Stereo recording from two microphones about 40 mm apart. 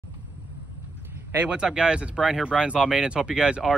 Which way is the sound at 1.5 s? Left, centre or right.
Centre.